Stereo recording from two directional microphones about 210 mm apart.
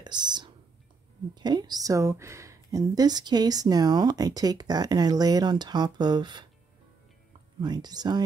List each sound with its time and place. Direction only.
0.0 s a woman's voice: 20° right (ahead or behind)
7.6 s a woman's voice: 20° right (ahead or behind)